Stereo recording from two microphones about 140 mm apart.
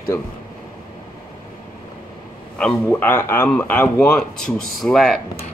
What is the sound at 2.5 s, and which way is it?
A man's voice, 10° left (ahead or behind).